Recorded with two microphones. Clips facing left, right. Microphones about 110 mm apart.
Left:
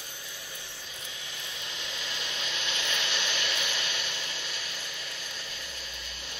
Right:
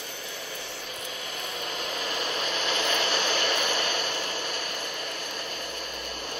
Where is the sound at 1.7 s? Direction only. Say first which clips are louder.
Right 8 dB; 50° right (ahead or behind).